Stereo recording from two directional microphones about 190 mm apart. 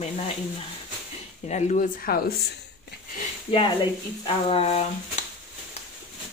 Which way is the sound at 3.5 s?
25° left (ahead or behind).